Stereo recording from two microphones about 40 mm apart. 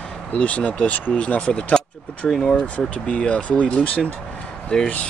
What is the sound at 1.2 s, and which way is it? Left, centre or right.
Speech, left.